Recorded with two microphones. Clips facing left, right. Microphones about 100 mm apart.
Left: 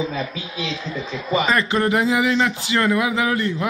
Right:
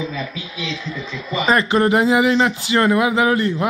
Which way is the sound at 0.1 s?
40° left (ahead or behind).